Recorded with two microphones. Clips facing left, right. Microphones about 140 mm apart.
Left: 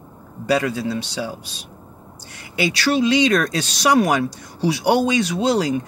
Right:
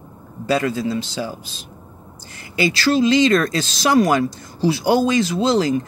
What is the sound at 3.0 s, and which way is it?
Speech, 60° left (ahead or behind).